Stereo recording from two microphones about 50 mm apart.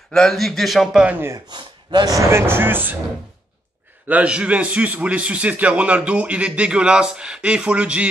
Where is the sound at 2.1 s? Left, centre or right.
Right.